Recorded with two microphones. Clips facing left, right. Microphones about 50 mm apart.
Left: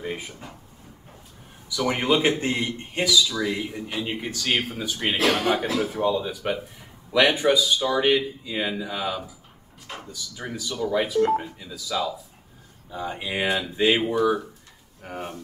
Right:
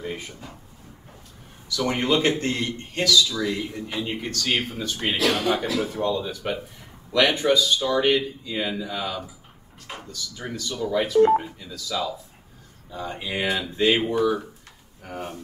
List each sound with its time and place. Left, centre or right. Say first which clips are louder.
0.0 s speech: left 1 dB; centre
1.7 s speech: even; centre
5.1 s speech: left 1 dB; left
5.8 s speech: left 1 dB; centre
11.3 s speech: right 3 dB; centre
11.7 s speech: left 1 dB; centre